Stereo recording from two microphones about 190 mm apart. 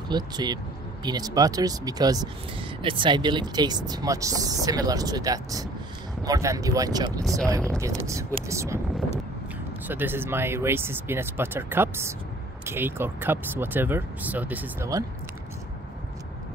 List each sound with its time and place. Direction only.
0.1 s speech: 20° right (ahead or behind)
7.2 s speech: centre (ahead or behind)
7.8 s speech: 15° right (ahead or behind)
9.8 s speech: 10° right (ahead or behind)